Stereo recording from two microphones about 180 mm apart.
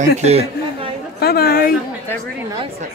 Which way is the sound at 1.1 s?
60° left (ahead or behind).